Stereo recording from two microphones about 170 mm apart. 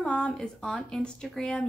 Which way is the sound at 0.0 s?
5° left (ahead or behind).